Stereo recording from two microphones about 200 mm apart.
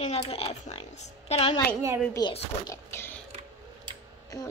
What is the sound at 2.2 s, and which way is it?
Speech, 20° left (ahead or behind).